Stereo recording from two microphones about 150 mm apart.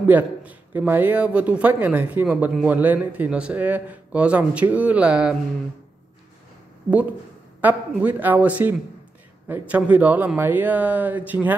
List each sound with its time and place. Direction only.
0.0 s a man's voice: 10° right (ahead or behind)
7.6 s a man's voice: 10° right (ahead or behind)